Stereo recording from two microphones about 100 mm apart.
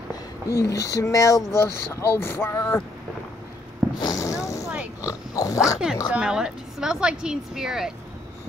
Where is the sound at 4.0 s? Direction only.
35° left (ahead or behind).